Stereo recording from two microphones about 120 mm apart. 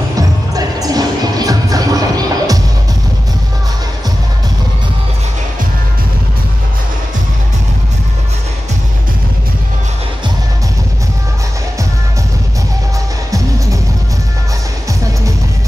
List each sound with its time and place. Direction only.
0.1 s music: 30° right (ahead or behind)